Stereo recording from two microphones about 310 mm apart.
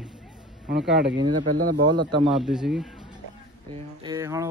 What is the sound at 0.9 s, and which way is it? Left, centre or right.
Speech, right.